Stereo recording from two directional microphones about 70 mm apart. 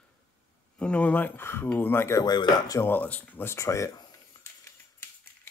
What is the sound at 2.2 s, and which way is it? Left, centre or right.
Speech, left.